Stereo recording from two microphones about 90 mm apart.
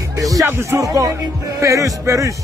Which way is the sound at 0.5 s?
30° right (ahead or behind).